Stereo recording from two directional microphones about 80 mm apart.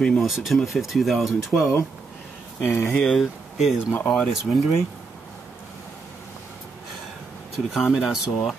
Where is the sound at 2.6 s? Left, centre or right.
Left.